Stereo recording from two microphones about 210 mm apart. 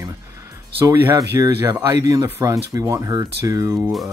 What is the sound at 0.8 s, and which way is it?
Speech, 15° right (ahead or behind).